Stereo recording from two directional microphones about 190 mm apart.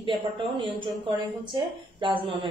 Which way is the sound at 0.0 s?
25° right (ahead or behind).